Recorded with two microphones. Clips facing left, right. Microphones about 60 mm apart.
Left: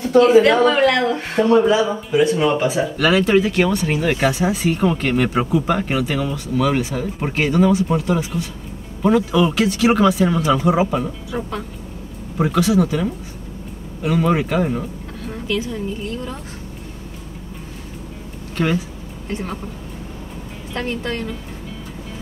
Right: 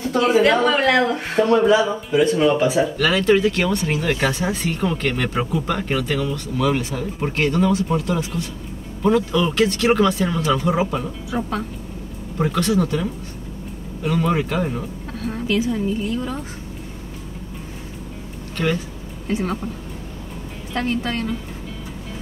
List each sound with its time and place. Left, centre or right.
0.5 s speech: centre
0.8 s speech: centre
1.4 s speech: left
1.9 s speech: centre
18.6 s speech: centre
19.2 s speech: centre
20.7 s speech: centre